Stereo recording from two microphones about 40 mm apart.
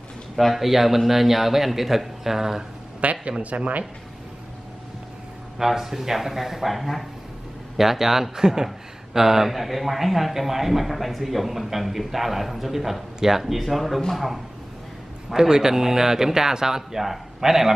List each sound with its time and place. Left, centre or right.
0.4 s speech: centre
3.0 s speech: right
5.6 s speech: centre